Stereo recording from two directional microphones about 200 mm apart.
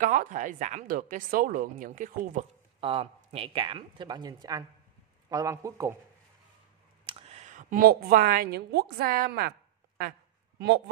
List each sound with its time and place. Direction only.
0.0 s a woman's voice: 40° right (ahead or behind)
2.8 s a woman's voice: 30° right (ahead or behind)
7.1 s a woman's voice: 30° right (ahead or behind); by 9.5 s 50° right (ahead or behind)